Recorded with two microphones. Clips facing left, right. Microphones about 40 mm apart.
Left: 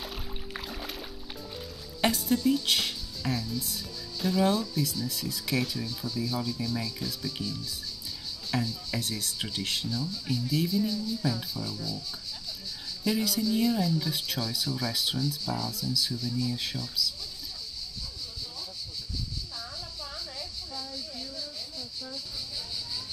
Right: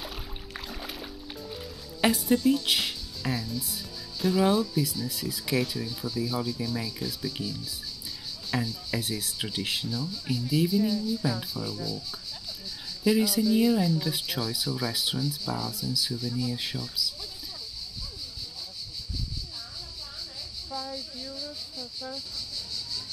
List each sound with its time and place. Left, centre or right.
0.0 s music: centre
8.5 s speech: centre
13.0 s speech: centre
20.7 s a sound: centre